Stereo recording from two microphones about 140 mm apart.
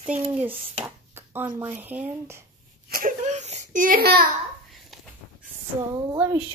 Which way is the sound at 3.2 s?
55° right (ahead or behind).